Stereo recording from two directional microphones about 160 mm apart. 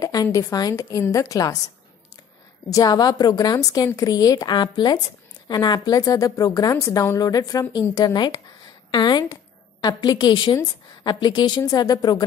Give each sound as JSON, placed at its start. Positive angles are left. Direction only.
{"t": 0.0, "sound": "a woman's voice", "side_deg": 20}
{"t": 2.7, "sound": "a woman's voice", "side_deg": 25}